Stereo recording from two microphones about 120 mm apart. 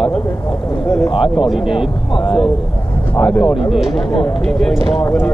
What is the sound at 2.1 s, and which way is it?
Speech, 45° left (ahead or behind).